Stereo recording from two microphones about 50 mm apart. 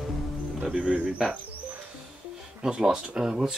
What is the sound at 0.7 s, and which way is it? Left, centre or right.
Speech, centre.